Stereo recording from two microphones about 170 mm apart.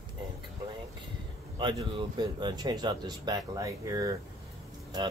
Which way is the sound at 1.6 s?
25° right (ahead or behind).